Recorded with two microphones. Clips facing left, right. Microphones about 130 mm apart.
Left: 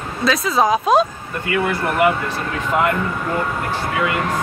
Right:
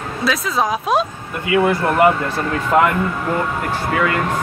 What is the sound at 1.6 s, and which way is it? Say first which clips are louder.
Speech: right 3 dB; 35° right (ahead or behind).